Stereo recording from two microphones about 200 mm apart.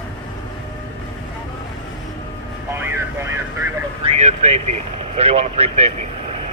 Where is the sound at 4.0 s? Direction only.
35° right (ahead or behind).